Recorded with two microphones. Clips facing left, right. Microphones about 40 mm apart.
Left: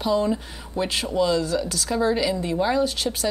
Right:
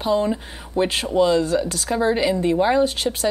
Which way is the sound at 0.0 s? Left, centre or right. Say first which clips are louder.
Right 2 dB; right.